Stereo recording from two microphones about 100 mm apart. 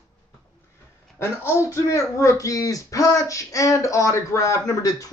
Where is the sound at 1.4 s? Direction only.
30° left (ahead or behind).